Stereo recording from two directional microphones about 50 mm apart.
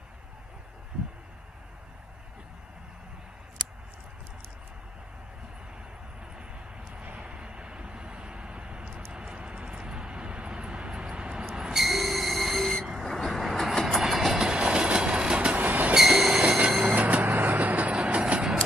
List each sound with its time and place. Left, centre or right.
6.3 s vehicle: centre
11.7 s train: centre
13.0 s vehicle: centre
14.0 s train: centre; by 15.9 s right
16.2 s train: centre
16.4 s train: right
16.8 s vehicle: right